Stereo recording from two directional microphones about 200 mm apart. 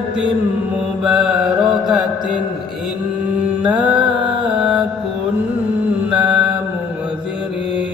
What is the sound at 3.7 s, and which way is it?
Mantra, 5° right (ahead or behind).